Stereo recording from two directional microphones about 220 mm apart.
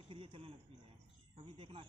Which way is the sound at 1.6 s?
25° right (ahead or behind).